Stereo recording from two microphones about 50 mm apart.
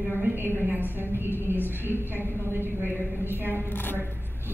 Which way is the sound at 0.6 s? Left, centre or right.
Right.